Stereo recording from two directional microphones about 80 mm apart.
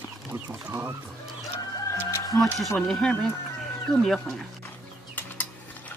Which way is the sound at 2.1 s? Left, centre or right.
Left.